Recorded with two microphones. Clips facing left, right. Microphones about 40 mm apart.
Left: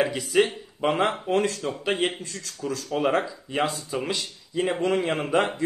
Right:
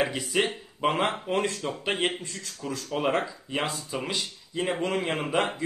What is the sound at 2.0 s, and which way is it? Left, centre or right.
Speech, centre.